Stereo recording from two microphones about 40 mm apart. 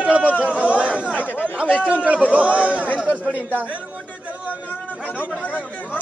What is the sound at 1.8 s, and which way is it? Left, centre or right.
Speech, right.